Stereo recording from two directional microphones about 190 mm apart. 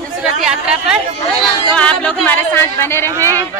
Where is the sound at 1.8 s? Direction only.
5° left (ahead or behind).